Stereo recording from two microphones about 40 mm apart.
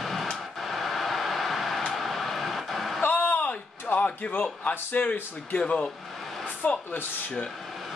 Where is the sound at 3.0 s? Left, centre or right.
Left.